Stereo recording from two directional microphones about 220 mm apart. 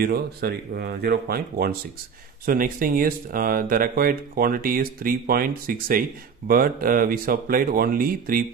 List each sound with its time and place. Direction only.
0.0 s speech: 45° right (ahead or behind)